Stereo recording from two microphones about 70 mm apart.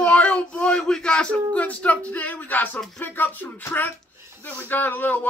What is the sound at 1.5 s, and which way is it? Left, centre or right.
Speech, centre.